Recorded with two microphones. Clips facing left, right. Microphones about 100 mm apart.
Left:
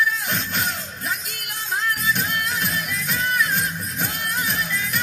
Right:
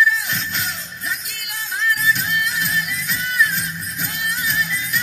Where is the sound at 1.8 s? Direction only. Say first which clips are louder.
Right 4 dB; 45° left (ahead or behind).